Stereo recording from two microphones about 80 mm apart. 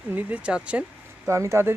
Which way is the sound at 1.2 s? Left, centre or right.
Right.